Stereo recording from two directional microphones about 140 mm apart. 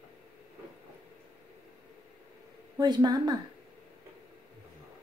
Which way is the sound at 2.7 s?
30° right (ahead or behind).